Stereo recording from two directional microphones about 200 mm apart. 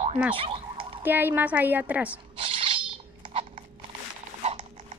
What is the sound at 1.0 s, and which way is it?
A woman's voice, 10° right (ahead or behind).